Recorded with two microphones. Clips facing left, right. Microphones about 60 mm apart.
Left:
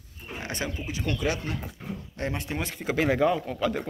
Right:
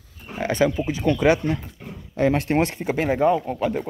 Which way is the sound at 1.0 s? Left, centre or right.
Right.